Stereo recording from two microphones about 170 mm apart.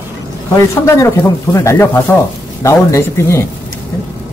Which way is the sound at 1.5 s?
15° left (ahead or behind).